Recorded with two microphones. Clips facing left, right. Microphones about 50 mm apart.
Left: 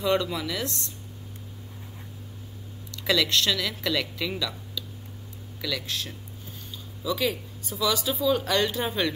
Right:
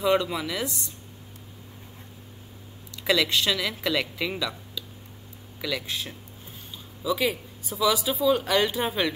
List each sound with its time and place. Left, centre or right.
0.0 s speech: centre
3.1 s speech: centre